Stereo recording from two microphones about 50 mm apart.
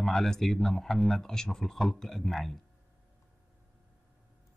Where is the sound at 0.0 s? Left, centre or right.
Centre.